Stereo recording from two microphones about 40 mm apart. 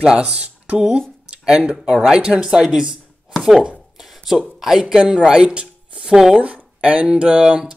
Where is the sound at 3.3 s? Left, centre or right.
Centre.